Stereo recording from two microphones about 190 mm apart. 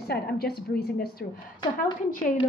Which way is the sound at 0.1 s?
55° left (ahead or behind).